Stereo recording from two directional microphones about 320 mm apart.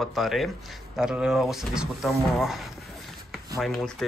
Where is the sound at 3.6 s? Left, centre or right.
Centre.